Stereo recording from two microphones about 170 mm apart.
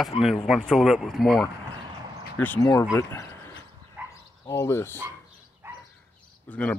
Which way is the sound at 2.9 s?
20° left (ahead or behind).